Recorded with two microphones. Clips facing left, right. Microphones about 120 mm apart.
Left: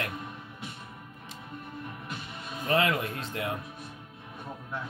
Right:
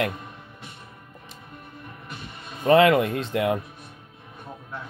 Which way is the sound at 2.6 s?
90° right.